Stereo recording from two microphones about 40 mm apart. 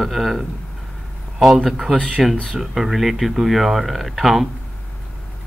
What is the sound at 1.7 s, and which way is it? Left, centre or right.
Speech, centre.